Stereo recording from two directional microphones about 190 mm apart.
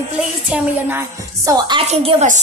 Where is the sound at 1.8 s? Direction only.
35° right (ahead or behind).